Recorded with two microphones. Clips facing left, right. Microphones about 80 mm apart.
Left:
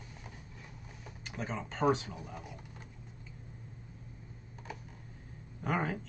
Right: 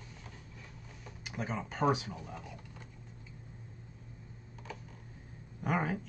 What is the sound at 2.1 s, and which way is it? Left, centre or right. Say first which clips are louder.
Speech: even; centre.